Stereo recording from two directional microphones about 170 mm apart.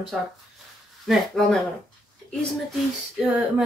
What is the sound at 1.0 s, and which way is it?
Speech, centre (ahead or behind).